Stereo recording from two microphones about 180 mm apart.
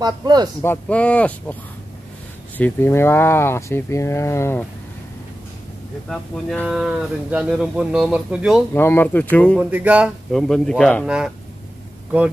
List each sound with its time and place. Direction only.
0.0 s a man's voice: 20° right (ahead or behind)
0.6 s speech: 10° left (ahead or behind)
6.0 s speech: 5° left (ahead or behind)
8.7 s speech: 10° left (ahead or behind)
9.6 s speech: 10° right (ahead or behind)
11.1 s speech: 5° right (ahead or behind)